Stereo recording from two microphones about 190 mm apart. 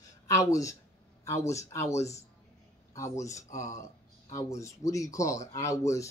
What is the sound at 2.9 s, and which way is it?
Speech, 15° left (ahead or behind).